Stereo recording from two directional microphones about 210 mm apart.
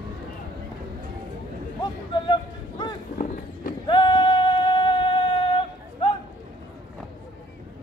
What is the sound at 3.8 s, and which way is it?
Singing, 20° left (ahead or behind).